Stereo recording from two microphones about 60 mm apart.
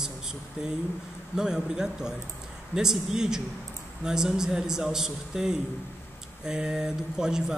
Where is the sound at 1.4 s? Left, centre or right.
Centre.